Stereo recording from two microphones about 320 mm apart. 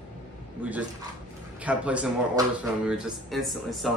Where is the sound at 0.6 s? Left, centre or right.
Centre.